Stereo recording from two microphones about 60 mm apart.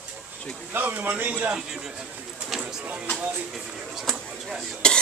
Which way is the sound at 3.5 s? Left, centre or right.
Centre.